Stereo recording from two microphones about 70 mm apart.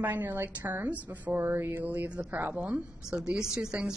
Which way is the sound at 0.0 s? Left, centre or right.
Right.